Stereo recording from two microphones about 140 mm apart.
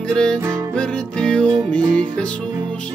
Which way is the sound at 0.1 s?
5° left (ahead or behind).